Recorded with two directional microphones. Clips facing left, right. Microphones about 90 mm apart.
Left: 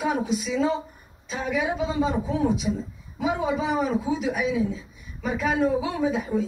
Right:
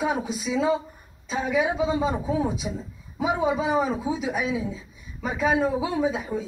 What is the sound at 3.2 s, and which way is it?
Speech, 25° right (ahead or behind).